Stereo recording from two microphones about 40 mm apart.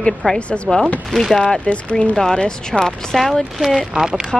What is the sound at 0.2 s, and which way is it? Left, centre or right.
Speech, left.